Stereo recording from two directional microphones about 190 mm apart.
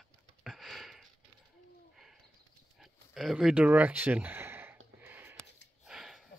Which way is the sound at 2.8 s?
Centre (ahead or behind).